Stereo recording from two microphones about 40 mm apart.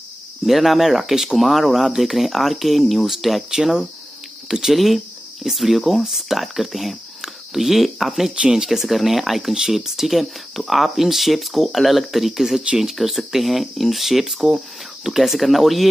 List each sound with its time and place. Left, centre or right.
0.5 s speech: centre
3.4 s speech: centre
4.7 s speech: centre
8.4 s speech: centre
8.6 s speech: centre